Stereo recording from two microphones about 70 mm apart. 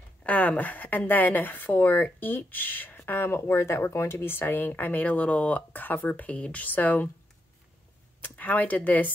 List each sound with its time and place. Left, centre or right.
0.2 s speech: centre
8.2 s speech: left